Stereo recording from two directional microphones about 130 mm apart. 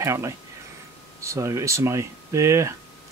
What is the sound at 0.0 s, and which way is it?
Speech, 20° right (ahead or behind).